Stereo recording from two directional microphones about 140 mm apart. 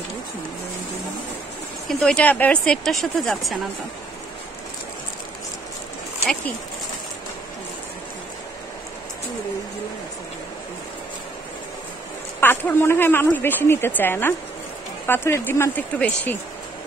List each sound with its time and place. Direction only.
1.9 s speech: 5° left (ahead or behind)
12.4 s speech: 15° left (ahead or behind)